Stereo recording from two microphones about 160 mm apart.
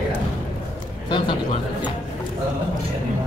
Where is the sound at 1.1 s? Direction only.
30° left (ahead or behind).